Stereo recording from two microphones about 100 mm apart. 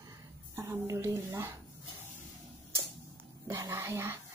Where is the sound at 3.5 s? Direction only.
25° right (ahead or behind).